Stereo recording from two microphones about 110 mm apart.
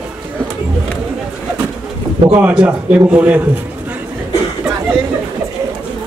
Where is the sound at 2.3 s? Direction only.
10° right (ahead or behind).